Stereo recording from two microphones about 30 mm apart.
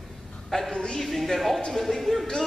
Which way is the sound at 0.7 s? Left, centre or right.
Left.